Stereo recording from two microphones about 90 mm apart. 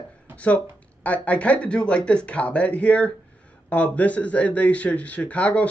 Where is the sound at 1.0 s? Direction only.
15° left (ahead or behind).